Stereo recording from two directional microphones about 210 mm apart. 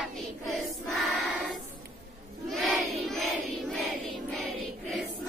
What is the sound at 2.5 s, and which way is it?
Battle cry, centre (ahead or behind).